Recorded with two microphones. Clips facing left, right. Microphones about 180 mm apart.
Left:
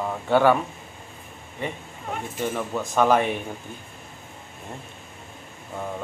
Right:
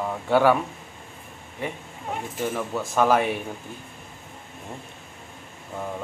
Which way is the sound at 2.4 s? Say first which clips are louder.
Even; centre (ahead or behind).